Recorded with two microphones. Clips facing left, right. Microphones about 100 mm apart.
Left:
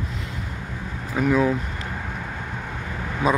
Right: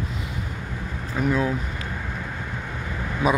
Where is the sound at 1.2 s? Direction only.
Centre (ahead or behind).